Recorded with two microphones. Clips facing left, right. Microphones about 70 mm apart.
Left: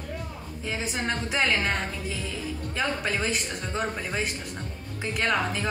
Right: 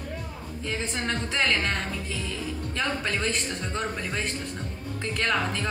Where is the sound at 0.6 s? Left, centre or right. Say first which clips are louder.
Even; centre.